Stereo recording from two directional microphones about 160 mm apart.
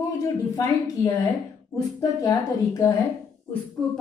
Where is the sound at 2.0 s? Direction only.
25° left (ahead or behind).